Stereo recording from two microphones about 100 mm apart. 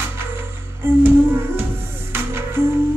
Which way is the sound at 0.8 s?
20° right (ahead or behind).